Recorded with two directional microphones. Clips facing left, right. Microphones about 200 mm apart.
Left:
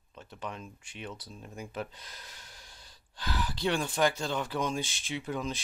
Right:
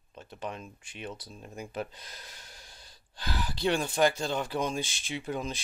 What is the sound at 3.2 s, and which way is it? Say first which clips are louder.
Speech: right 1 dB; 35° right (ahead or behind).